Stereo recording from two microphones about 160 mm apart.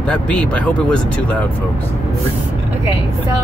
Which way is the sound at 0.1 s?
5° left (ahead or behind).